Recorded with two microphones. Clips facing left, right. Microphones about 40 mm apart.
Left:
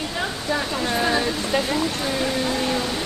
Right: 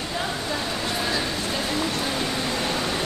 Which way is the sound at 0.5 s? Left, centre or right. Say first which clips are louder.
Left 4 dB; left.